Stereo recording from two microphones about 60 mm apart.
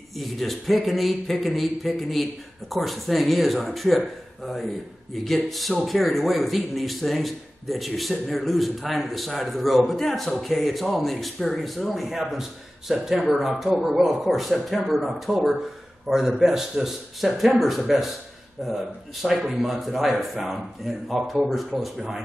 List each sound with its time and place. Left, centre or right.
0.1 s a man's voice: centre